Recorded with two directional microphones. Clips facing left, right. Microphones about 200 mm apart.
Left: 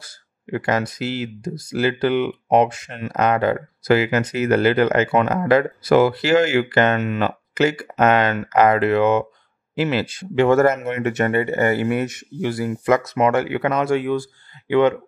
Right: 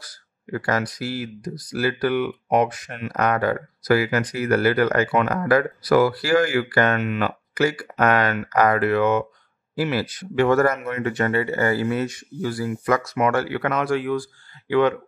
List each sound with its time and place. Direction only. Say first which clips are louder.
0.0 s speech: left 2 dB; 20° left (ahead or behind)